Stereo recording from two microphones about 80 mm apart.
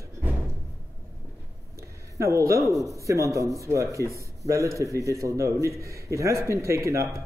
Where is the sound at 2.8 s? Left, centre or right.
Right.